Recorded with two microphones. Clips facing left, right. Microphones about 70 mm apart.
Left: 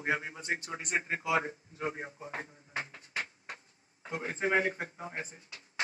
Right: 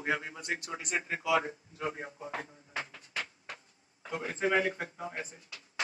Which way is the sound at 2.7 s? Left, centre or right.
Left.